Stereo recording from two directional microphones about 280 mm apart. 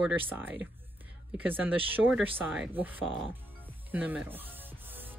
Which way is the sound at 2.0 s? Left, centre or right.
Centre.